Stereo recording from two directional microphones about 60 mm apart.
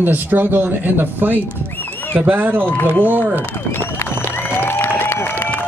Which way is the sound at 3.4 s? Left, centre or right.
Left.